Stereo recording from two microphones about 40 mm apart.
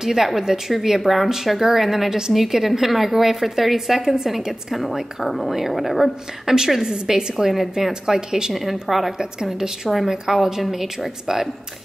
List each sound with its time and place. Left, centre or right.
0.0 s a woman's voice: centre
6.5 s a woman's voice: centre
9.2 s a woman's voice: centre